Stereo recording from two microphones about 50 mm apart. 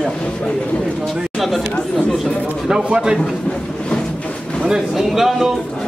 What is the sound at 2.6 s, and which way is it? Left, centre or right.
Speech, centre.